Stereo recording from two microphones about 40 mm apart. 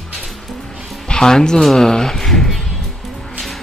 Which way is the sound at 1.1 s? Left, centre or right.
Centre.